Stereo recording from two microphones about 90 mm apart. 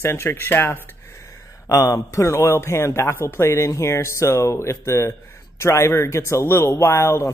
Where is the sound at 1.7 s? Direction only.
40° left (ahead or behind).